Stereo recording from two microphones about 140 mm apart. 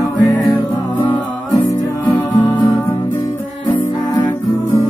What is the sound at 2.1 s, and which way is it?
Music, 30° left (ahead or behind).